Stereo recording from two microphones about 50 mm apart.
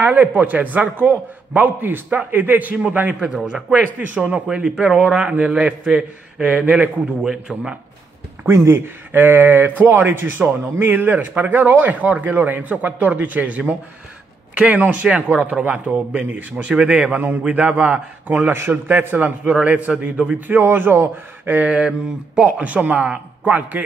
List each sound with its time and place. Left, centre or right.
0.0 s speech: right
3.2 s a man's voice: centre
3.8 s speech: right
4.2 s speech: right
8.5 s speech: right
14.8 s speech: right
16.7 s a man's voice: centre
20.3 s speech: right
21.5 s speech: right
21.7 s speech: right